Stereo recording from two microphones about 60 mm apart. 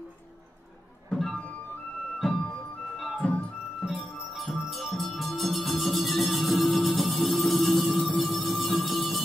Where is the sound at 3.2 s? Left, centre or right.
Centre.